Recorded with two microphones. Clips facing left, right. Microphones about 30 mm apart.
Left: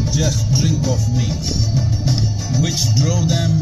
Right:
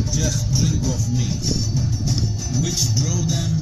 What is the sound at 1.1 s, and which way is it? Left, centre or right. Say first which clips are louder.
Music: left 2 dB; left.